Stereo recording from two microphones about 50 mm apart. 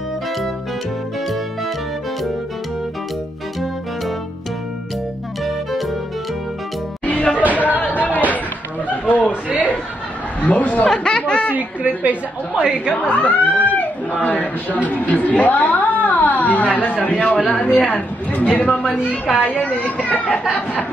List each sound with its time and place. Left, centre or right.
5.4 s music: centre
7.1 s music: left
7.5 s a sound: left
9.0 s chuckle: left
10.4 s speech: left
10.9 s a sound: centre
12.0 s a woman's voice: right
12.6 s a woman's voice: centre
12.9 s speech: left
18.9 s a woman's voice: centre
19.4 s speech: left